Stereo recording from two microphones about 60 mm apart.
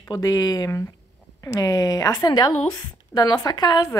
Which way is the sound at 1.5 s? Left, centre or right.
Left.